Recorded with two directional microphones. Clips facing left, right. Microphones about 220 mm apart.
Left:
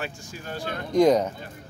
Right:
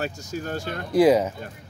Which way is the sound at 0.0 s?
45° right (ahead or behind).